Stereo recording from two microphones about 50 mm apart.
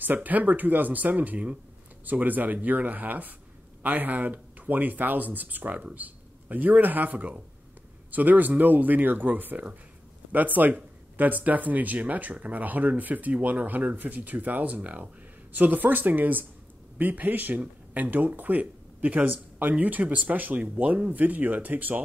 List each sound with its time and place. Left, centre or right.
0.0 s speech: right